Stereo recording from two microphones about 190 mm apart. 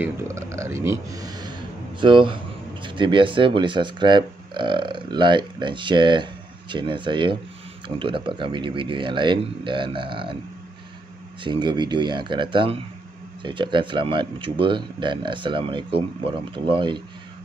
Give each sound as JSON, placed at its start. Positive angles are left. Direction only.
{"t": 0.0, "sound": "speech", "side_deg": -15}
{"t": 11.4, "sound": "speech", "side_deg": -25}